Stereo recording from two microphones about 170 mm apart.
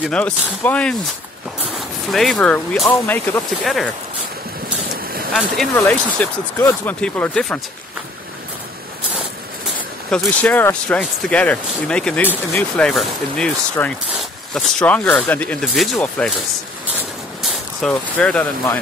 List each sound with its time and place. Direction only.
0.1 s speech: 10° left (ahead or behind)
2.0 s speech: centre (ahead or behind)
4.9 s vehicle: 60° right (ahead or behind)
5.8 s speech: 10° left (ahead or behind)
10.1 s speech: 10° left (ahead or behind)
17.4 s speech: centre (ahead or behind)